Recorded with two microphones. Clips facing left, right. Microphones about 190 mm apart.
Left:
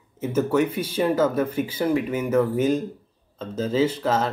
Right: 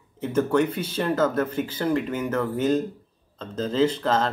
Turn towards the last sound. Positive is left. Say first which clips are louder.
# even
turn(degrees=10)  # may be behind; listen again after turning